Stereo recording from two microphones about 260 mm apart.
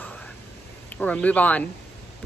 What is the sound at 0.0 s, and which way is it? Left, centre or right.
Whispering, centre.